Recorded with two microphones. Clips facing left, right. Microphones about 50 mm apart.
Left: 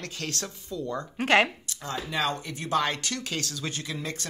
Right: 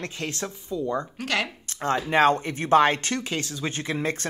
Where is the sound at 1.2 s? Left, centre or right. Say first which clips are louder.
Left 9 dB; left.